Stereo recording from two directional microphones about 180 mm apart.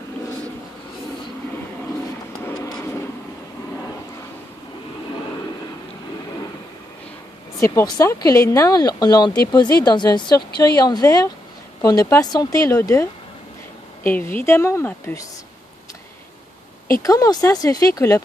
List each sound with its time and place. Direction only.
2.4 s vehicle: 20° left (ahead or behind)
7.6 s speech: 20° left (ahead or behind)
17.0 s speech: 20° left (ahead or behind)